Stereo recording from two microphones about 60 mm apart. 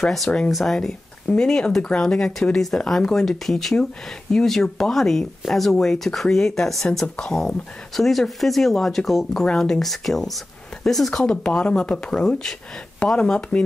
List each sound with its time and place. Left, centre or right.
0.0 s speech: centre
0.7 s speech: centre
7.2 s speech: centre
7.4 s speech: centre
11.2 s speech: centre